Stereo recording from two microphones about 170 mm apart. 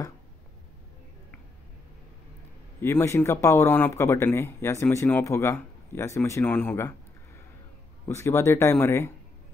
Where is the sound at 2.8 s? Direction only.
15° left (ahead or behind).